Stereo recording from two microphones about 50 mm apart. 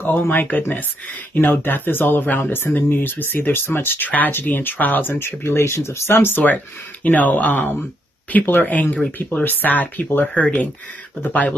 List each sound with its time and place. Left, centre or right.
0.0 s speech: left
6.3 s speech: left